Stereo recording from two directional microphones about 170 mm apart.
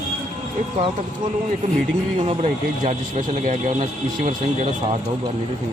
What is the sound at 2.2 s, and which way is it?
Speech, 40° right (ahead or behind).